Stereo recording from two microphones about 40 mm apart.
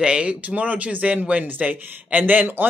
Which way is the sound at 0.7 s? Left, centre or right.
Right.